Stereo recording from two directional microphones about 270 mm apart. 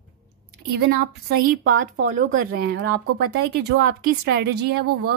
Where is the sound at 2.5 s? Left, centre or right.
Right.